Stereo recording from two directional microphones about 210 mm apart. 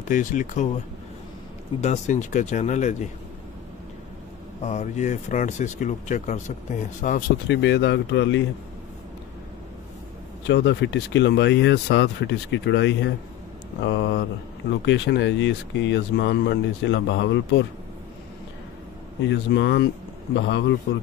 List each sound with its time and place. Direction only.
0.1 s speech: 35° left (ahead or behind)
1.8 s speech: 35° left (ahead or behind)
4.6 s speech: 35° left (ahead or behind)
7.4 s speech: 55° left (ahead or behind)
10.5 s speech: 55° left (ahead or behind)
19.2 s speech: 55° left (ahead or behind)